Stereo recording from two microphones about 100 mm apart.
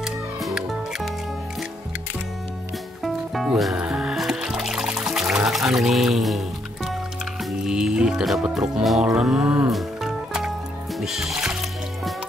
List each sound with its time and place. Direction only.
0.0 s music: 5° right (ahead or behind)
3.0 s music: centre (ahead or behind)